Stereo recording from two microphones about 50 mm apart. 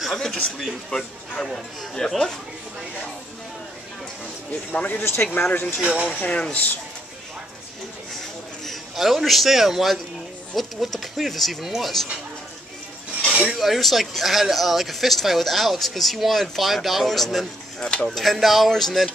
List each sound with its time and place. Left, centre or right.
0.0 s speech: centre
0.8 s speech: centre
4.7 s speech: left
5.0 s speech: left
5.5 s speech: left
6.1 s speech: left
6.5 s speech: left
8.6 s a man's voice: centre
13.3 s speech: centre
13.6 s speech: centre
17.7 s stir: centre
18.0 s speech: centre